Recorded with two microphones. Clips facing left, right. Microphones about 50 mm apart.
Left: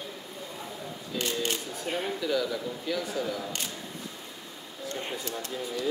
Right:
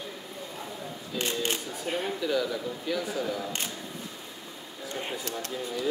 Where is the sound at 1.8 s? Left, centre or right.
Centre.